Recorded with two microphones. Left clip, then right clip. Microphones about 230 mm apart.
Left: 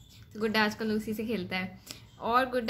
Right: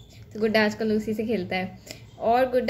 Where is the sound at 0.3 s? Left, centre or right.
Centre.